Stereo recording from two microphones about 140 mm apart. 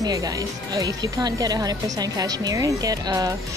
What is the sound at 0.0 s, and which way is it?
Speech, 25° right (ahead or behind).